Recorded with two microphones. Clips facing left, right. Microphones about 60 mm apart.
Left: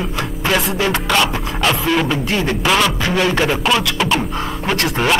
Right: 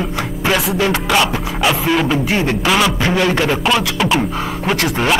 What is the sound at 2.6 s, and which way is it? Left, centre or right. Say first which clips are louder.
Speech: left 1 dB; centre.